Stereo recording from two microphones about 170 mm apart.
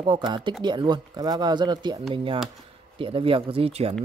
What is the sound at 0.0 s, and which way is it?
Speech, 30° right (ahead or behind).